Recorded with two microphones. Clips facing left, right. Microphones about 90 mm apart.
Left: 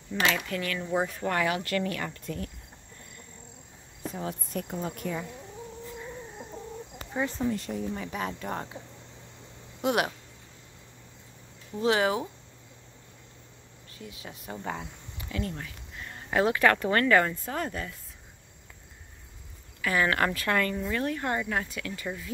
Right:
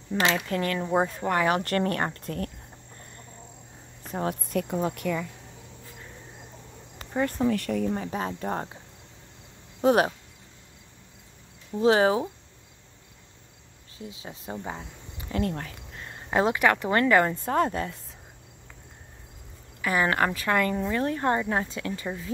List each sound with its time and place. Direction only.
0.1 s speech: 25° right (ahead or behind)
1.5 s speech: 45° right (ahead or behind)
4.1 s a woman's voice: 65° right (ahead or behind)
7.4 s speech: 65° right (ahead or behind)
7.9 s speech: 35° right (ahead or behind)
9.8 s speech: 35° right (ahead or behind)
11.8 s speech: 35° right (ahead or behind)
13.9 s speech: 25° right (ahead or behind)
15.3 s speech: 45° right (ahead or behind)
16.0 s speech: 25° right (ahead or behind)
19.8 s speech: 25° right (ahead or behind)